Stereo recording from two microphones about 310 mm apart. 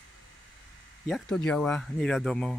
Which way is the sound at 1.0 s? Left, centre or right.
Centre.